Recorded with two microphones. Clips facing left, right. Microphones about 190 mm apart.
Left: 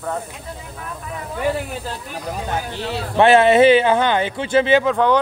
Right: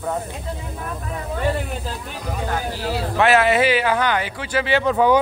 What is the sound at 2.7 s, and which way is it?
Speech, 25° left (ahead or behind).